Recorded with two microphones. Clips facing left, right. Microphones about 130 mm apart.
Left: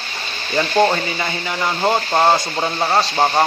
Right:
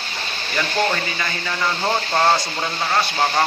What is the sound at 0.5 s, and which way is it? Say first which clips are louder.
Speech: left 6 dB; 30° left (ahead or behind).